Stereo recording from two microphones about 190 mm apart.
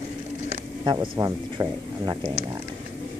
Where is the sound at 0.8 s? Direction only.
25° right (ahead or behind).